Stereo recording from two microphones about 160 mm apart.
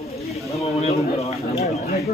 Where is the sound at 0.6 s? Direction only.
40° left (ahead or behind).